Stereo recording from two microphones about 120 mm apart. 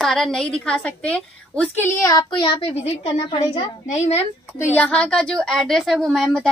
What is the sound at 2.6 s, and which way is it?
Speech, 50° left (ahead or behind).